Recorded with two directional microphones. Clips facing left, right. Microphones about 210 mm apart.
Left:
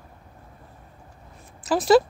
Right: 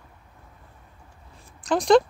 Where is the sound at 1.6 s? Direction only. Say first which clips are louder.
Even; 5° left (ahead or behind).